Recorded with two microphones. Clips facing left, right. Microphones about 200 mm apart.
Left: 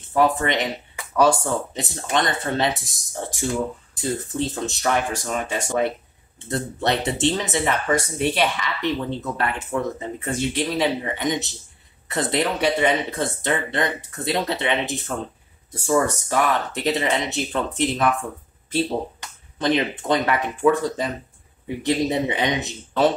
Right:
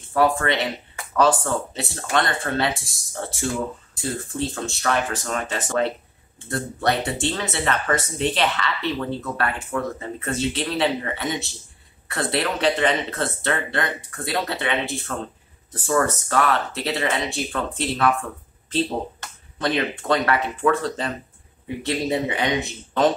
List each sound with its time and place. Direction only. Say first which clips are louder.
0.1 s speech: even; 20° left (ahead or behind)